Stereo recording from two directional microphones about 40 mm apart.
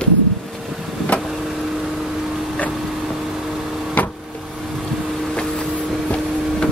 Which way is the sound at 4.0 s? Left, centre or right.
Left.